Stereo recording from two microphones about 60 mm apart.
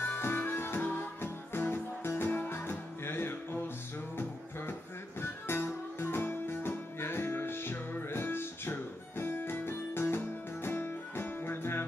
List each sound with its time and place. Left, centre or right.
0.0 s music: left
5.2 s music: left